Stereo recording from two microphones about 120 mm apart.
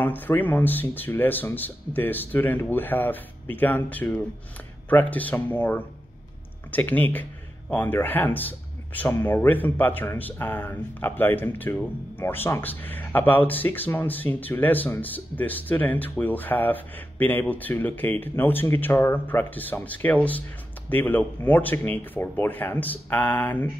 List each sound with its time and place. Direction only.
0.0 s speech: 15° left (ahead or behind)